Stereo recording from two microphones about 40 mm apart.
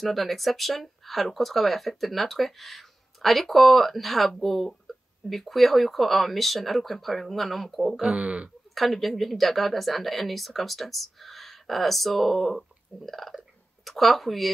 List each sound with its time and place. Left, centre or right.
0.0 s speech: centre
8.2 s speech: right
8.7 s speech: centre